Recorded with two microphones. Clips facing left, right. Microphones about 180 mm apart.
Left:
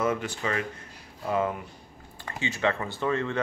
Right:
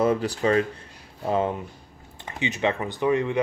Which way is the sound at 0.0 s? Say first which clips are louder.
Right 6 dB; 35° right (ahead or behind).